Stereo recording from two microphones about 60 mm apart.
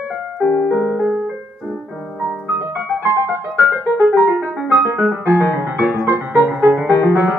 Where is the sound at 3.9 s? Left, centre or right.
Right.